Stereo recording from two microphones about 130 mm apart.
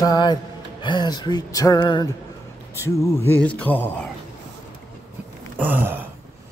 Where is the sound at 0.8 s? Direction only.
35° left (ahead or behind).